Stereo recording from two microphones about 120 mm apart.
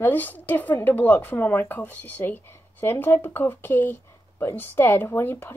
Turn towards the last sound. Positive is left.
turn(degrees=20)  # may be behind; listen again after turning